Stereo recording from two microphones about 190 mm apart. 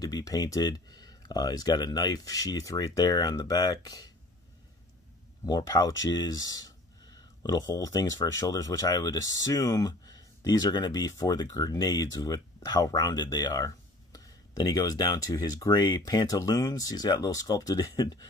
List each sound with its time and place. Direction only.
0.0 s speech: 20° left (ahead or behind)
5.4 s speech: 20° left (ahead or behind)